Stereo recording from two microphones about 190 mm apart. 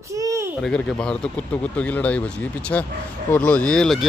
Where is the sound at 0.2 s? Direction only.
15° right (ahead or behind).